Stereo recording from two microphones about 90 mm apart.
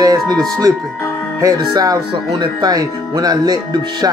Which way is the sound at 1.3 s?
40° right (ahead or behind).